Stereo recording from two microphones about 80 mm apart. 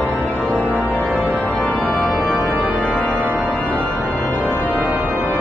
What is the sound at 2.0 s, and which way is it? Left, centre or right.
Organ, centre.